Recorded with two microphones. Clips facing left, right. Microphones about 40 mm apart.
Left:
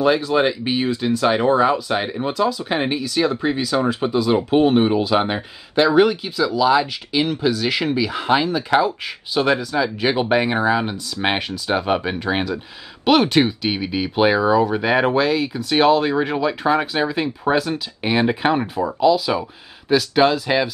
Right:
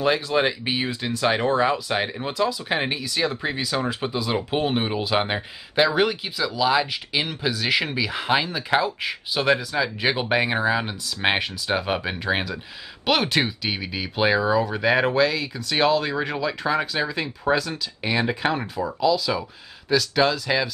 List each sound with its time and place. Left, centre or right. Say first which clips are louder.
0.0 s speech: left 4 dB; centre